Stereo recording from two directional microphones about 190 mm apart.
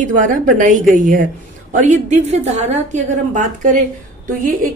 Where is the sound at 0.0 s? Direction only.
45° right (ahead or behind).